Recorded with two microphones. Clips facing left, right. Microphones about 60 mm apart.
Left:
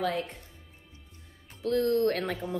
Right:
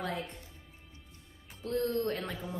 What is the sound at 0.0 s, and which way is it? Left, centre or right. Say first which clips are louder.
Speech: left 6 dB; left.